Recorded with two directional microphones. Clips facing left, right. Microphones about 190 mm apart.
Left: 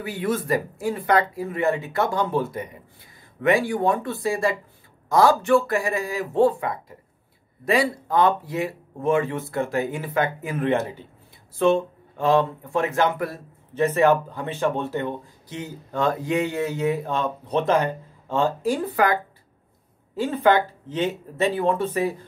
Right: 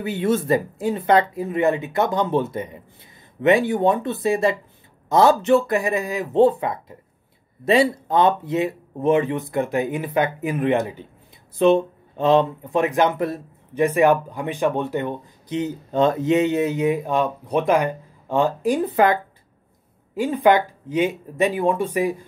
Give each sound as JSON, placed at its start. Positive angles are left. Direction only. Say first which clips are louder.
{"t": 0.0, "sound": "speech", "louder": "right 4 dB", "side_deg": -25}
{"t": 20.2, "sound": "speech", "louder": "right 2 dB", "side_deg": -15}